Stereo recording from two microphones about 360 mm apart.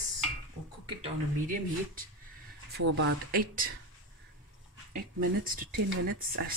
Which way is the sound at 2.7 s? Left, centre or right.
Right.